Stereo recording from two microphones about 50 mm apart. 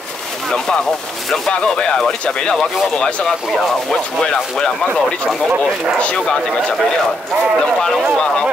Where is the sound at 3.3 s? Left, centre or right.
Centre.